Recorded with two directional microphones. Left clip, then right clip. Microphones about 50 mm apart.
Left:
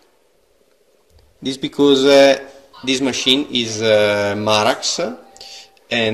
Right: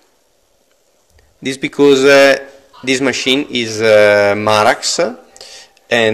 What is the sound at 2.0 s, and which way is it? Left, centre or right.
Speech, left.